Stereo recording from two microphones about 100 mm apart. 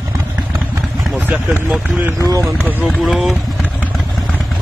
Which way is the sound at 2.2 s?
35° right (ahead or behind).